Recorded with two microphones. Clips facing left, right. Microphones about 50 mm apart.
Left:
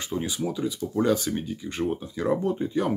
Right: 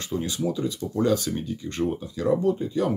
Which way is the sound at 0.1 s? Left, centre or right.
Centre.